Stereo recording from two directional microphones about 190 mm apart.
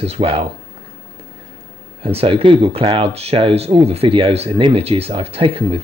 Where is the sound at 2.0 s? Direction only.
30° right (ahead or behind).